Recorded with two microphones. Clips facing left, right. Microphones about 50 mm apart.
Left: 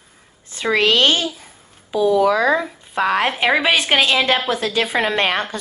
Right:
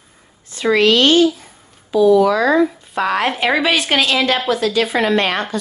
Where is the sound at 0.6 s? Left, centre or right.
Left.